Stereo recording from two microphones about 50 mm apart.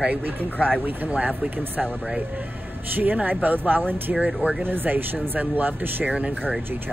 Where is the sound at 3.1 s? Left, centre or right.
Right.